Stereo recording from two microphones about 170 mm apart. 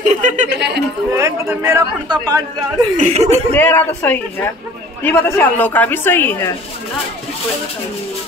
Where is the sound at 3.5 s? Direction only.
10° left (ahead or behind).